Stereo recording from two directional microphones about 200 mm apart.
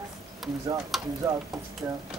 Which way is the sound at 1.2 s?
15° right (ahead or behind).